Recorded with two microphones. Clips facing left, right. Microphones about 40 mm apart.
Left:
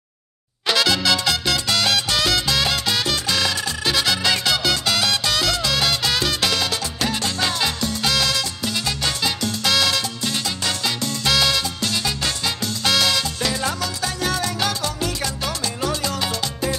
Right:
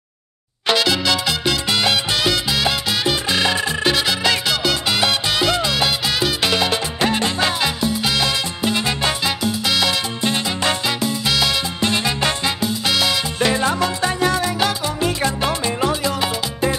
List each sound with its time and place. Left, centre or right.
0.7 s salsa music: centre
3.3 s music: right
3.9 s music: centre
6.5 s music: right
9.2 s salsa music: centre
10.2 s music: right
11.0 s music: centre
11.8 s salsa music: right
12.5 s music: centre
13.4 s music: right